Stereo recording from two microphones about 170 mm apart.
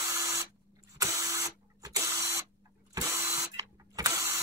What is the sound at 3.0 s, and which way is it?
Vehicle, 20° right (ahead or behind).